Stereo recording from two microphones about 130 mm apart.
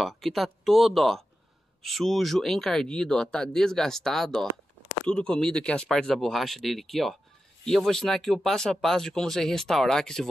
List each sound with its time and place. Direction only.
0.0 s speech: centre (ahead or behind)